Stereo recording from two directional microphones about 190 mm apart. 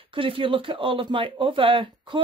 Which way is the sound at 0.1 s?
25° right (ahead or behind).